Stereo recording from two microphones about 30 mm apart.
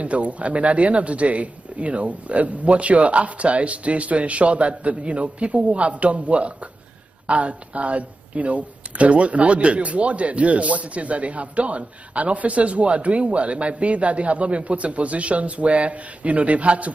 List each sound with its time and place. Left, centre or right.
0.0 s a man's voice: right